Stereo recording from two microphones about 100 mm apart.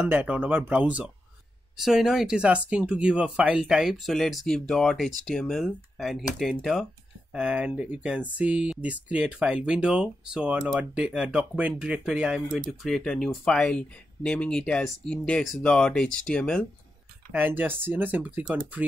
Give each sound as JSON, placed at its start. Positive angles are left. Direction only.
{"t": 0.1, "sound": "speech", "side_deg": -20}
{"t": 7.3, "sound": "speech", "side_deg": -15}
{"t": 17.3, "sound": "speech", "side_deg": -20}